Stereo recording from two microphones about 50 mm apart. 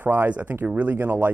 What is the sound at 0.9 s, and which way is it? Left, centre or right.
Speech, right.